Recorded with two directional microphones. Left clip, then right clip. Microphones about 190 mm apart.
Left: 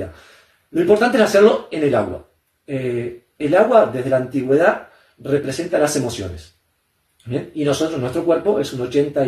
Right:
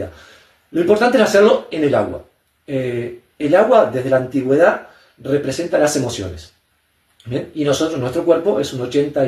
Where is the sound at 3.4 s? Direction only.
15° right (ahead or behind).